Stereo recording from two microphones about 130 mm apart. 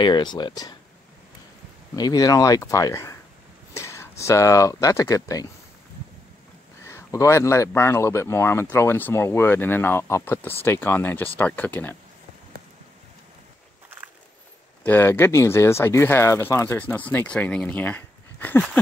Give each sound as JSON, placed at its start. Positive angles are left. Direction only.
{"t": 0.0, "sound": "speech", "side_deg": 35}
{"t": 2.0, "sound": "speech", "side_deg": 30}
{"t": 6.8, "sound": "speech", "side_deg": 25}
{"t": 14.8, "sound": "speech", "side_deg": 15}